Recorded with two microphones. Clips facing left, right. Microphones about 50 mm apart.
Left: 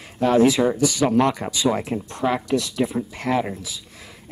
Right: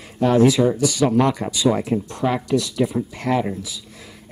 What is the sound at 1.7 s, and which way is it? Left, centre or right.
Speech, centre.